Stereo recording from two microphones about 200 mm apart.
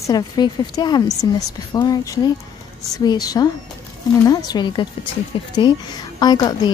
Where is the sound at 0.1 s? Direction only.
20° left (ahead or behind).